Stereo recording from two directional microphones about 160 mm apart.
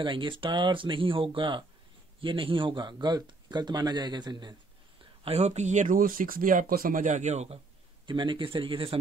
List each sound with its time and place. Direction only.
0.0 s speech: 30° right (ahead or behind)
5.2 s speech: 40° right (ahead or behind)
8.1 s speech: 30° right (ahead or behind)